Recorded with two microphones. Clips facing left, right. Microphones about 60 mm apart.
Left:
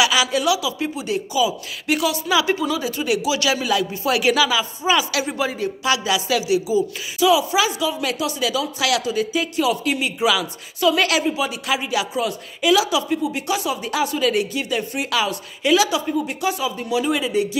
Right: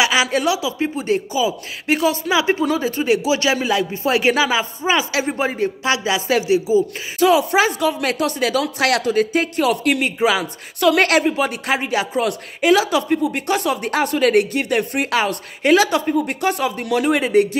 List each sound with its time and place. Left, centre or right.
0.0 s speech: right
10.2 s speech: right
10.8 s speech: right
15.0 s speech: right